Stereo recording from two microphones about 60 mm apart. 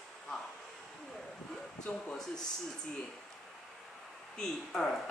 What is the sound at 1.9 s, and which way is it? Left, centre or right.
Speech, centre.